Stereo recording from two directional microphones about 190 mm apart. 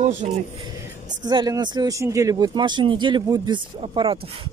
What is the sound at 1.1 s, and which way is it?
Speech, 20° right (ahead or behind).